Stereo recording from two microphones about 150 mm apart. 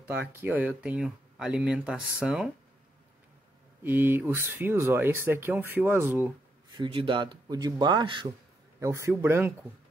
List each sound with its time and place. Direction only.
0.0 s speech: 15° right (ahead or behind)
3.8 s speech: 15° right (ahead or behind)
6.8 s speech: 35° right (ahead or behind)
8.7 s speech: 20° right (ahead or behind)